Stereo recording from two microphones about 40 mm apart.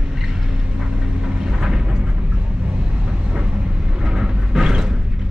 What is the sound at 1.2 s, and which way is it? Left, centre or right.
Vehicle, centre.